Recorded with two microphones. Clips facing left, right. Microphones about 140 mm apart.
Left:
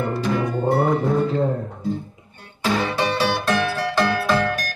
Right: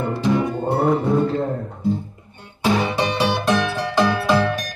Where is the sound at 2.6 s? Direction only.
15° right (ahead or behind).